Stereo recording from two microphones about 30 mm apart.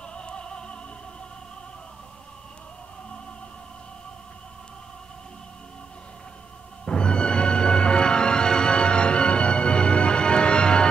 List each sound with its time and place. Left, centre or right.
0.1 s music: left
6.9 s music: left